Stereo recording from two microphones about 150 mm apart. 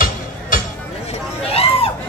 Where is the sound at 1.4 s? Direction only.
40° left (ahead or behind).